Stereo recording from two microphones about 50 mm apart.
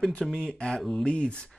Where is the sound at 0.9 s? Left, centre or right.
Centre.